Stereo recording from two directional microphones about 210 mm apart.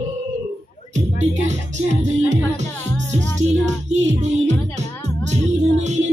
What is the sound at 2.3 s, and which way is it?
Music, 35° right (ahead or behind).